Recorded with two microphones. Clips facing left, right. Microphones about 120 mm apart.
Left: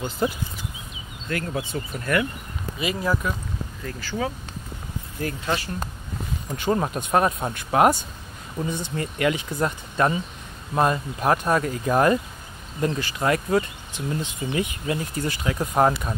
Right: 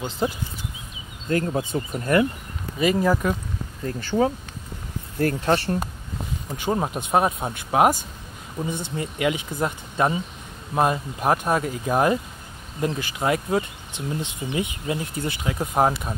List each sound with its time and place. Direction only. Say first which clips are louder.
0.2 s speech: even; 15° right (ahead or behind)
1.3 s speech: right 5 dB; 30° right (ahead or behind)
1.6 s speech: right 3 dB; 40° right (ahead or behind)
2.0 s speech: right 4 dB; 25° right (ahead or behind)
2.8 s speech: right 5 dB; 45° right (ahead or behind)
3.8 s speech: right 7 dB; 30° right (ahead or behind)
5.2 s speech: right 6 dB; 45° right (ahead or behind)
6.5 s speech: left 1 dB; 10° right (ahead or behind)